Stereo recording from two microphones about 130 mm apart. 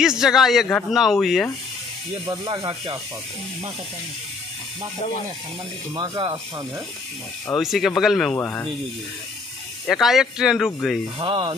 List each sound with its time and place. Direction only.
0.0 s speech: 5° right (ahead or behind)
2.2 s speech: 35° right (ahead or behind)
5.9 s speech: 30° right (ahead or behind)
7.5 s speech: centre (ahead or behind)
8.3 s speech: 15° left (ahead or behind)
9.8 s speech: centre (ahead or behind)
11.1 s speech: 40° right (ahead or behind)